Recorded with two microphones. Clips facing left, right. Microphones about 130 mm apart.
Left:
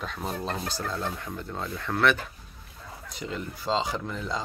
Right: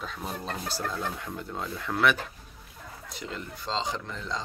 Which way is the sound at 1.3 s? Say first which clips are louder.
Left 1 dB; 5° right (ahead or behind).